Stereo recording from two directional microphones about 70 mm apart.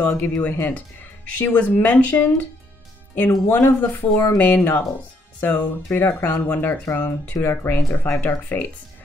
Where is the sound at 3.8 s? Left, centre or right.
Left.